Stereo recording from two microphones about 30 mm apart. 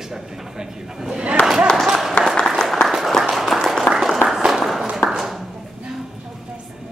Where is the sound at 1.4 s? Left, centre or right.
Left.